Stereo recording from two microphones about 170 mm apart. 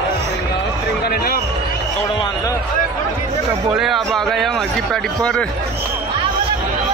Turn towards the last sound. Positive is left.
turn(degrees=5)  # may be behind; listen again after turning